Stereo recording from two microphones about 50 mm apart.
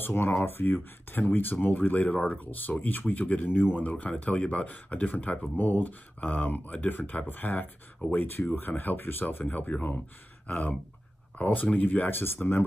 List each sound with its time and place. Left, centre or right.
0.0 s speech: left
9.5 s speech: left